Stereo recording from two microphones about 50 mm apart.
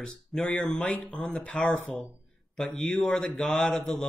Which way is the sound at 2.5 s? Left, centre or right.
Centre.